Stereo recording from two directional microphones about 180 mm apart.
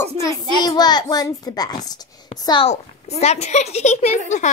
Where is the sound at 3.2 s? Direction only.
40° left (ahead or behind).